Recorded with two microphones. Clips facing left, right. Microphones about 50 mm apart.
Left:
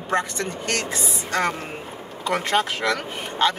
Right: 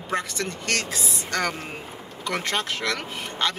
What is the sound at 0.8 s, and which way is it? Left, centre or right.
Speech, left.